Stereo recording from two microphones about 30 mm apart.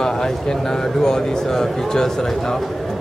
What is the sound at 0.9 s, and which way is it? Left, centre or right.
Speech, centre.